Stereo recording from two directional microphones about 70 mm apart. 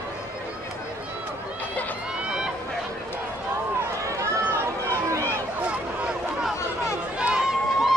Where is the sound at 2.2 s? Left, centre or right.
Centre.